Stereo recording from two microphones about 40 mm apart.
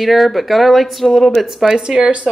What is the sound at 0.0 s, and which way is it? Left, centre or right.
Speech, centre.